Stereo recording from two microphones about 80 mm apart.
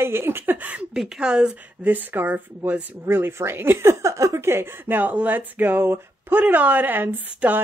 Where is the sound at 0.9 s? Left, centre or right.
Centre.